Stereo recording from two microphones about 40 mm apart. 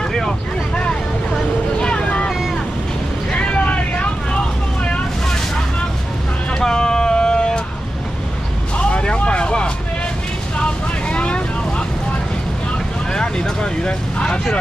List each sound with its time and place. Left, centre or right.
0.7 s vehicle: left
3.3 s vehicle: left
6.6 s vehicle: centre
8.7 s vehicle: left
11.1 s vehicle: left
13.1 s vehicle: left